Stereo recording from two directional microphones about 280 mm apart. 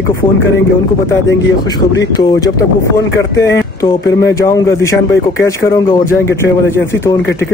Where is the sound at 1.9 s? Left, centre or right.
Centre.